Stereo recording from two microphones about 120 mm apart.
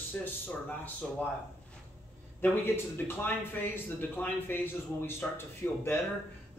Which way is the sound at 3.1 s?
20° left (ahead or behind).